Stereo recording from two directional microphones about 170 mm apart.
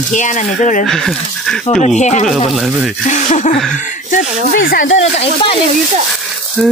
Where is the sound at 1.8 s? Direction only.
45° left (ahead or behind).